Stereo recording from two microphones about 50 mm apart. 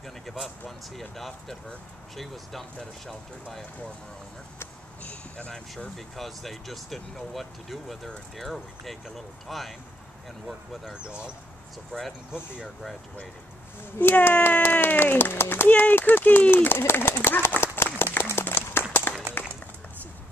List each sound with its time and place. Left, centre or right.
0.0 s speech: centre
5.9 s speech: centre
10.9 s speech: centre
11.9 s speech: centre
13.9 s speech: left
17.2 s run: left